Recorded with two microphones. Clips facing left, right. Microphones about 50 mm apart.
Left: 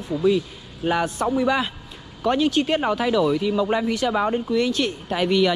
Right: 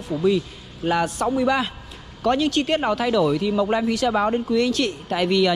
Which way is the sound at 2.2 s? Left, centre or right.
Centre.